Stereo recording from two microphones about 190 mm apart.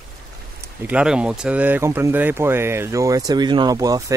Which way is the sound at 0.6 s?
10° right (ahead or behind).